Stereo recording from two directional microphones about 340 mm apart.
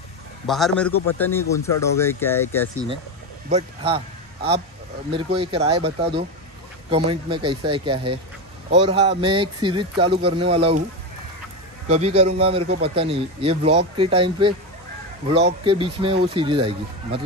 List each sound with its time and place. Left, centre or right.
0.5 s a man's voice: centre
3.4 s a man's voice: centre
5.1 s a man's voice: centre
11.9 s a man's voice: centre
15.6 s a man's voice: centre